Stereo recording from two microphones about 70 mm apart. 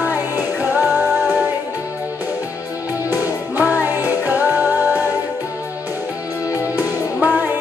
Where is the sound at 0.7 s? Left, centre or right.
Right.